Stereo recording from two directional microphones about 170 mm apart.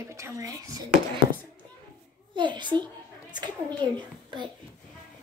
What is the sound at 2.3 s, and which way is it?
A child's voice, 25° right (ahead or behind).